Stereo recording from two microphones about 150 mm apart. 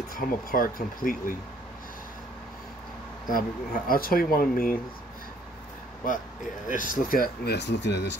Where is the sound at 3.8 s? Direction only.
75° left (ahead or behind).